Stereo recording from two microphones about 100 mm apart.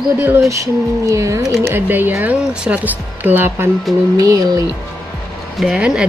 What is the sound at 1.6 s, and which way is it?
Speech, 20° right (ahead or behind).